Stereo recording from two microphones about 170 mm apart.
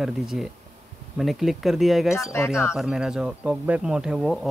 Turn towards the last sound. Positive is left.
turn(degrees=0)  # may be behind; listen again after turning